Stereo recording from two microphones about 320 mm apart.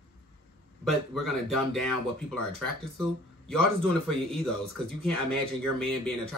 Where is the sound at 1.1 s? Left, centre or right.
Centre.